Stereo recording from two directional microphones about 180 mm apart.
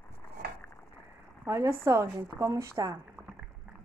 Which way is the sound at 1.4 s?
15° right (ahead or behind).